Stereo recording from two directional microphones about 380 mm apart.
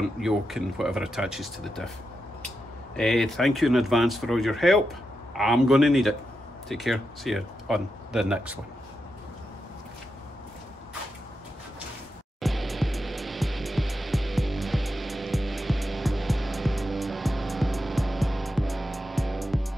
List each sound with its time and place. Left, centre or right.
0.2 s speech: centre
3.0 s speech: centre
12.4 s music: centre